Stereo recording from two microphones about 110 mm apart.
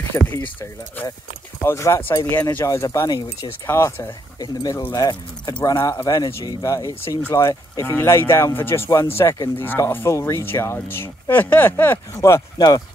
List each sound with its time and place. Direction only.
0.1 s speech: 20° left (ahead or behind)
4.4 s speech: 35° left (ahead or behind)
12.2 s speech: 30° left (ahead or behind)